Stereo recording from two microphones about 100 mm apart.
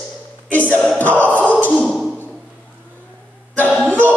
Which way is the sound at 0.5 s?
15° left (ahead or behind).